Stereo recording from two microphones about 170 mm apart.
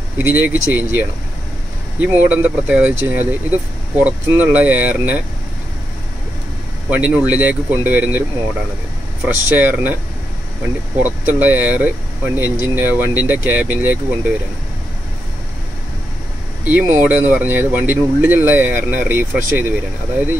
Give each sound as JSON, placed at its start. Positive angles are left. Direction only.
{"t": 0.2, "sound": "speech", "side_deg": -10}
{"t": 6.9, "sound": "speech", "side_deg": -10}
{"t": 9.2, "sound": "speech", "side_deg": -10}
{"t": 11.3, "sound": "speech", "side_deg": -10}
{"t": 16.6, "sound": "speech", "side_deg": -10}